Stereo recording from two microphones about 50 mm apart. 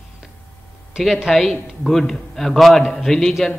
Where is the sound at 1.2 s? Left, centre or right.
Centre.